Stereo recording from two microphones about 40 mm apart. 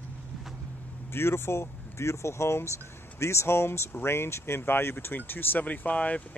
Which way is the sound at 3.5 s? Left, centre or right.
Left.